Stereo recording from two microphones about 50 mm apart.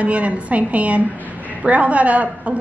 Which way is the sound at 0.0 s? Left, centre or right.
Right.